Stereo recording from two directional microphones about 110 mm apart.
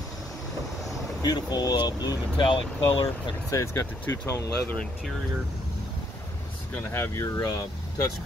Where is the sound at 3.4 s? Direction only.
30° left (ahead or behind).